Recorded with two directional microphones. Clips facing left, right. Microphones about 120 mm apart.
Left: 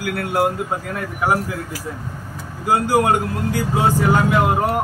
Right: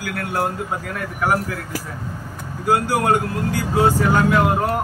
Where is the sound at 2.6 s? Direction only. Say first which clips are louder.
Left 1 dB; 20° left (ahead or behind).